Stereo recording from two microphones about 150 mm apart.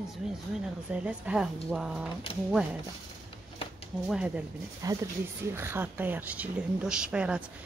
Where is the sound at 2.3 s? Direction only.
40° left (ahead or behind).